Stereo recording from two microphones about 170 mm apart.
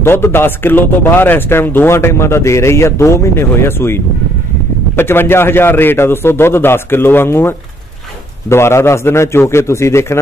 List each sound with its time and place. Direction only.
0.0 s a man's voice: 15° left (ahead or behind)